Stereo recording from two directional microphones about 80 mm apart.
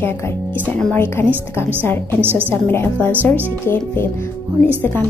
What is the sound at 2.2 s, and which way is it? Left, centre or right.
Speech, right.